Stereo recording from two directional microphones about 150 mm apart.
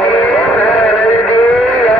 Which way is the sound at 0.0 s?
5° left (ahead or behind).